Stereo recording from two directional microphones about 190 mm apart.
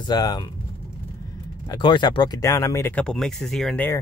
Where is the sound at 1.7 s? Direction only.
25° left (ahead or behind).